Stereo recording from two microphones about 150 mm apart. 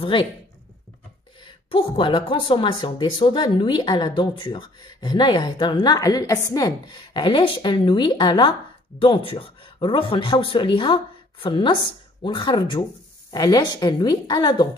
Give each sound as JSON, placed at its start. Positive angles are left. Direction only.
{"t": 0.0, "sound": "speech", "side_deg": 35}
{"t": 1.4, "sound": "a woman's voice", "side_deg": 35}